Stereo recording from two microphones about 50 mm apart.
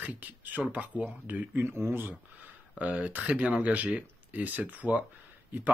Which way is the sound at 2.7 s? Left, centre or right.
Right.